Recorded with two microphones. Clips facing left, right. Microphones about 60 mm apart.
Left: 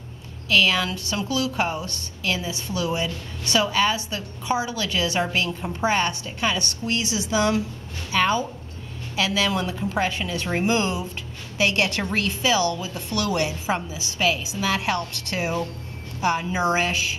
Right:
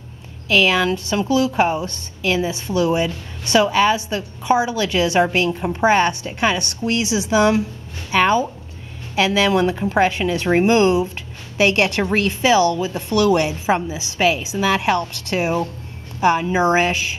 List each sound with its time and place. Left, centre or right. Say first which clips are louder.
0.5 s a woman's voice: right 5 dB; right
5.5 s a woman's voice: right 7 dB; right
6.8 s a woman's voice: right 6 dB; right
11.5 s a woman's voice: right 6 dB; right